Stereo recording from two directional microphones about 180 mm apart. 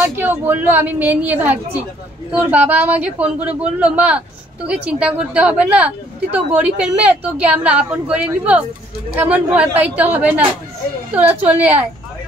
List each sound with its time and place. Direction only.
0.1 s a woman's voice: 10° right (ahead or behind)